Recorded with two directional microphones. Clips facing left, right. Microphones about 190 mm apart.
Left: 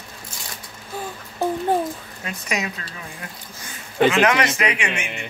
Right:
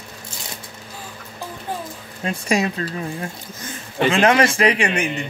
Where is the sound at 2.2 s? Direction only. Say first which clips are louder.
Right 7 dB; 30° right (ahead or behind).